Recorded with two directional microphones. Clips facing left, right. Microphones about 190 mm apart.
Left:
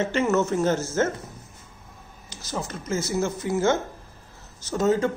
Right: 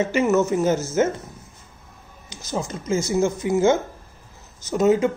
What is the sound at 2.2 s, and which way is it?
A woman's voice, 15° right (ahead or behind).